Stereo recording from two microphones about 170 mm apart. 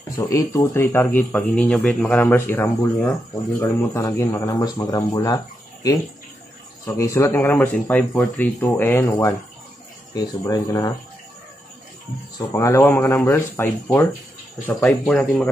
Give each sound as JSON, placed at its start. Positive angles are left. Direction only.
{"t": 0.2, "sound": "speech", "side_deg": 20}
{"t": 12.4, "sound": "speech", "side_deg": 20}